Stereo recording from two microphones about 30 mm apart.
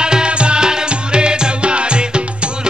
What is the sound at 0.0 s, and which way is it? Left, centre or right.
Music, right.